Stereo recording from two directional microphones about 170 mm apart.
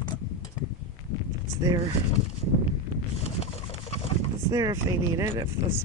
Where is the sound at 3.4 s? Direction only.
40° left (ahead or behind).